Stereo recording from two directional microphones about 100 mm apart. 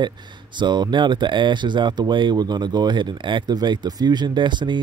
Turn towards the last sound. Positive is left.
turn(degrees=-50)  # may be behind; listen again after turning